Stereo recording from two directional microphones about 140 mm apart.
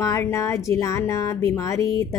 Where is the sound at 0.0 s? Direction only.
20° left (ahead or behind).